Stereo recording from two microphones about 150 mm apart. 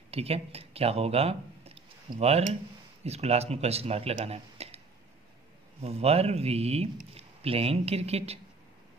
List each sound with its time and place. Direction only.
0.1 s a man's voice: 40° right (ahead or behind)